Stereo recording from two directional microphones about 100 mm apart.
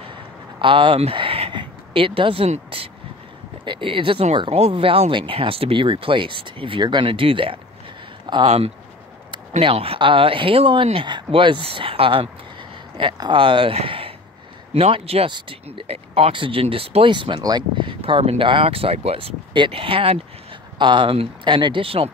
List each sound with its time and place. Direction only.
0.0 s a sound: 60° right (ahead or behind)
3.6 s speech: 55° right (ahead or behind); by 4.4 s 75° right (ahead or behind)
4.5 s speech: 85° right; by 7.5 s 65° right (ahead or behind)
8.5 s speech: 90° right
9.6 s speech: 70° right (ahead or behind)
14.7 s speech: 80° right
15.2 s speech: 55° right (ahead or behind)
17.1 s speech: 55° right (ahead or behind)
17.4 s speech: 45° right (ahead or behind); by 20.2 s 65° right (ahead or behind)
20.7 s speech: 50° right (ahead or behind); by 22.1 s 70° right (ahead or behind)